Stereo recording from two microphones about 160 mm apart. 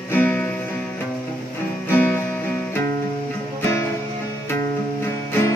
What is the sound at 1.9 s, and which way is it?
Music, 10° left (ahead or behind).